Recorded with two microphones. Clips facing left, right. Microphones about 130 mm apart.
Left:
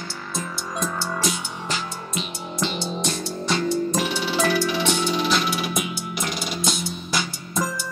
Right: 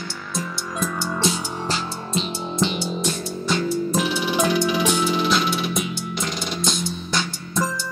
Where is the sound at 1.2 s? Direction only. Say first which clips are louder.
Right 3 dB; 30° right (ahead or behind).